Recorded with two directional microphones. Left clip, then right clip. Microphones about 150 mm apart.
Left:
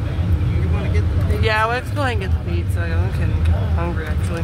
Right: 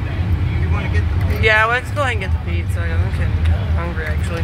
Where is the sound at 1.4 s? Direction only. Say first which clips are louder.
Right 5 dB; 20° left (ahead or behind).